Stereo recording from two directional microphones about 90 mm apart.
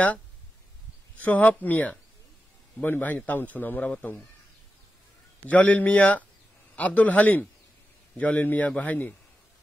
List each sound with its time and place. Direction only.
1.1 s a man's voice: 20° left (ahead or behind)
5.5 s a man's voice: 15° left (ahead or behind)